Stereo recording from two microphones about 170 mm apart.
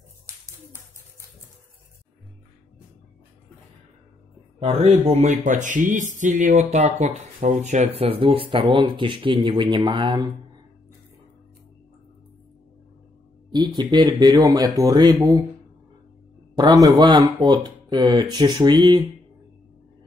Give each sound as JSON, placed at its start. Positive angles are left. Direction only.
{"t": 4.6, "sound": "speech", "side_deg": -35}
{"t": 13.7, "sound": "speech", "side_deg": -25}
{"t": 16.5, "sound": "speech", "side_deg": -25}